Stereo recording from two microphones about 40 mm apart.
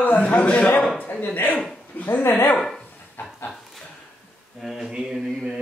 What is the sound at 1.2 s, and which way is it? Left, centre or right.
Speech, left.